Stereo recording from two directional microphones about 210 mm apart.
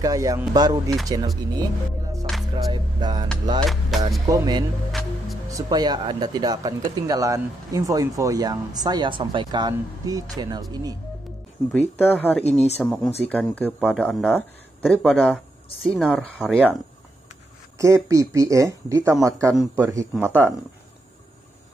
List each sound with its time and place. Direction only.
0.0 s speech: 15° right (ahead or behind)
2.5 s speech: 20° right (ahead or behind)
3.9 s speech: centre (ahead or behind)
4.3 s speech: 20° right (ahead or behind)
11.7 s speech: 10° left (ahead or behind)
12.4 s speech: 30° left (ahead or behind)
12.7 s speech: 5° left (ahead or behind)
17.7 s speech: 15° right (ahead or behind)